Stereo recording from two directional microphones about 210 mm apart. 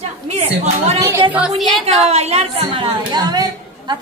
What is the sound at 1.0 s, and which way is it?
Speech, 10° right (ahead or behind).